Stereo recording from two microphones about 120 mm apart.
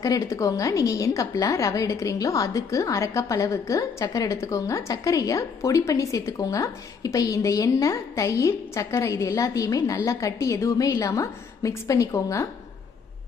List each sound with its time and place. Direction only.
0.0 s a woman's voice: 25° left (ahead or behind)